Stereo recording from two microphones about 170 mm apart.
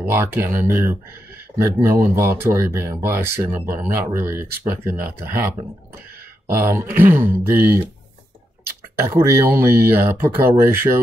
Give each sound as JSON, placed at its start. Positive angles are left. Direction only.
{"t": 0.0, "sound": "speech", "side_deg": -10}
{"t": 6.5, "sound": "speech", "side_deg": -15}
{"t": 9.2, "sound": "speech", "side_deg": -15}